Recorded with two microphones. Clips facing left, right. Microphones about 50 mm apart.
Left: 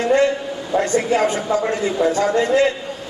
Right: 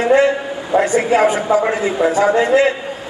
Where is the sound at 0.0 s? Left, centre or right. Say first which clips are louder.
Right 3 dB; centre.